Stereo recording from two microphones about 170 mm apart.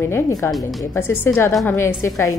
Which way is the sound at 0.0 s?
15° left (ahead or behind).